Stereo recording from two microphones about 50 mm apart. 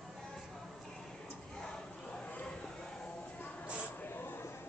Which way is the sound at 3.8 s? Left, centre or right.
Left.